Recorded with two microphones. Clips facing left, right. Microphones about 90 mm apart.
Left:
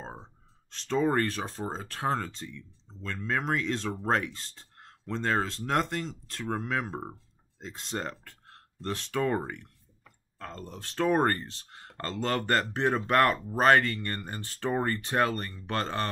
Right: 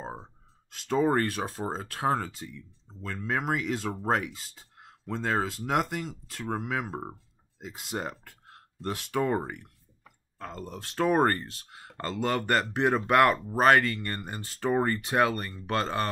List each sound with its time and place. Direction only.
0.0 s speech: 10° right (ahead or behind)